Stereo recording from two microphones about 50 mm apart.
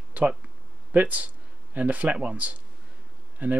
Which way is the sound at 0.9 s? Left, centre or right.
Right.